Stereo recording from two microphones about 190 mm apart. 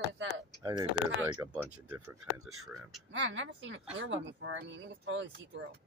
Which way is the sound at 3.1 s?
75° right (ahead or behind).